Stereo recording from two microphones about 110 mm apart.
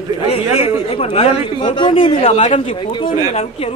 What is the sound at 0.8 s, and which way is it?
Speech, 60° left (ahead or behind).